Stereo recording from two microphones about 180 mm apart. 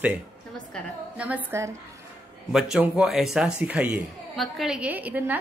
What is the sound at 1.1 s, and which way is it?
Speech, 5° right (ahead or behind).